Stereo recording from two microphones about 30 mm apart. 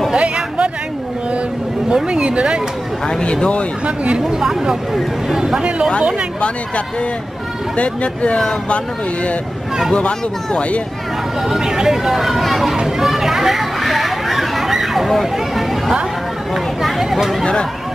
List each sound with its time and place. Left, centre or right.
0.1 s a sound: right
2.0 s speech: right
3.1 s speech: left
3.8 s speech: right
5.3 s speech: right
7.7 s speech: left
11.4 s speech: centre
13.2 s a sound: centre
16.8 s speech: centre